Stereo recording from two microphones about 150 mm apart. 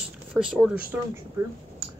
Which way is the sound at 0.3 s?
5° right (ahead or behind).